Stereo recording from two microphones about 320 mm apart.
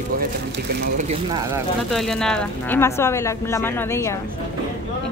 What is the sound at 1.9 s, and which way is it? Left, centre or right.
Speech, centre.